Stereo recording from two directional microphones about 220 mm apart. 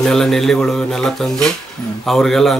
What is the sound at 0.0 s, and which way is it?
A man's voice, centre (ahead or behind).